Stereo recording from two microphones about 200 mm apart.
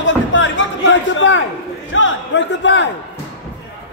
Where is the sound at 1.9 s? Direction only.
70° left (ahead or behind).